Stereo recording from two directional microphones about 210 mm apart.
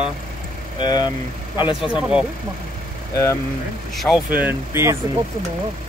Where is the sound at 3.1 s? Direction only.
15° left (ahead or behind).